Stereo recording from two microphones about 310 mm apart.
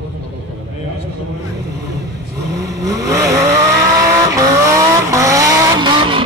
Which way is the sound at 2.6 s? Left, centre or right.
Centre.